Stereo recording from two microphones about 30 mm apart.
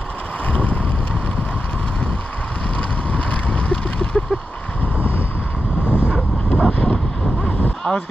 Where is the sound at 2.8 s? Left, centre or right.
Left.